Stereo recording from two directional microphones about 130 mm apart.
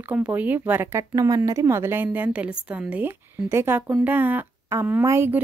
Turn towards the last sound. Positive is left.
turn(degrees=-20)  # may be behind; listen again after turning